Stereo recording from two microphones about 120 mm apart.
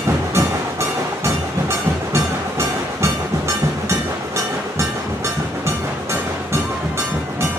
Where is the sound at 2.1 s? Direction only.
25° right (ahead or behind).